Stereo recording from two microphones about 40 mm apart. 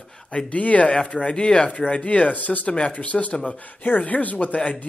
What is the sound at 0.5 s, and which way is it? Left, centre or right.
Speech, left.